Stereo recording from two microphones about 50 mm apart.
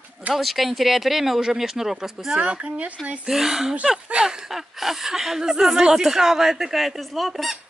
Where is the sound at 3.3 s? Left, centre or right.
Centre.